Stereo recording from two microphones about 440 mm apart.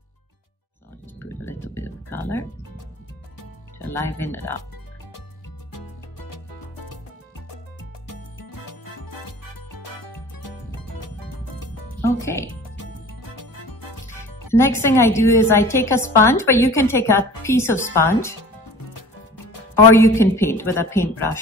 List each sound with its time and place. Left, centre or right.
1.2 s music: centre
3.8 s a woman's voice: centre
5.7 s music: left
8.1 s music: left
12.2 s speech: centre
13.7 s music: left
14.5 s a woman's voice: centre
19.7 s a woman's voice: centre